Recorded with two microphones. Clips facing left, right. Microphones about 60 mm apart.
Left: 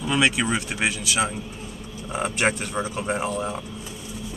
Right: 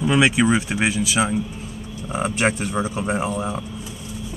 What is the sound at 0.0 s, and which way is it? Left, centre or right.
Speech, centre.